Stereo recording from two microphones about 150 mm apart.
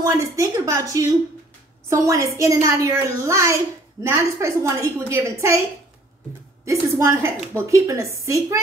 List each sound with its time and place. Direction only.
0.0 s a woman's voice: 20° right (ahead or behind)
6.6 s a woman's voice: 20° right (ahead or behind)